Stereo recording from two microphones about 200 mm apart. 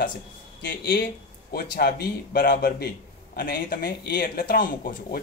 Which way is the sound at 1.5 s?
50° left (ahead or behind).